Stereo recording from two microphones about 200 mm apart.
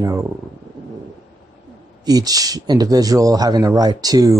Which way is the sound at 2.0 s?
20° right (ahead or behind).